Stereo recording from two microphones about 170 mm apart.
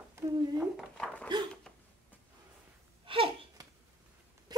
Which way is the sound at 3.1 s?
30° right (ahead or behind).